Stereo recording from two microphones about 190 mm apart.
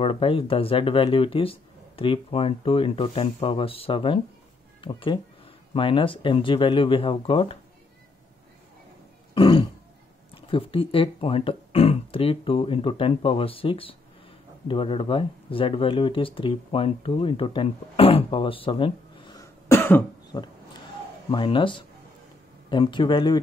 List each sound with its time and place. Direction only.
0.0 s speech: 30° left (ahead or behind)
9.3 s throat clearing: 25° left (ahead or behind)
10.3 s speech: 30° left (ahead or behind)